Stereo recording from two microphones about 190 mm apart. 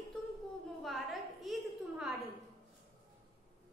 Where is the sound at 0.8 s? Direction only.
Centre (ahead or behind).